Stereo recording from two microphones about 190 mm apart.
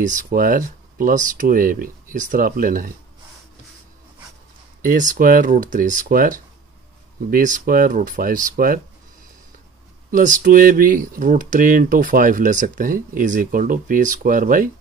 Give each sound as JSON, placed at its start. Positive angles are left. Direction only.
{"t": 0.0, "sound": "speech", "side_deg": -45}
{"t": 4.8, "sound": "speech", "side_deg": -45}
{"t": 10.1, "sound": "speech", "side_deg": -45}